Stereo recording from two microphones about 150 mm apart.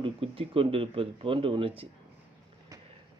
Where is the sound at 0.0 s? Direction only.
35° right (ahead or behind).